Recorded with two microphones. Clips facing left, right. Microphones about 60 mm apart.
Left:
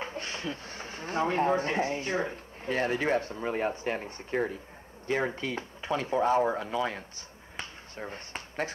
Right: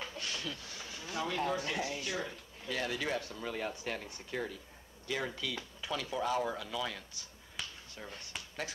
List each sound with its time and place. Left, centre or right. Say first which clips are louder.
0.0 s speech: left 5 dB; left